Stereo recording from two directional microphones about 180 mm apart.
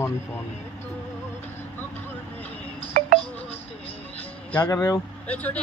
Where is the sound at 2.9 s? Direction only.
50° right (ahead or behind).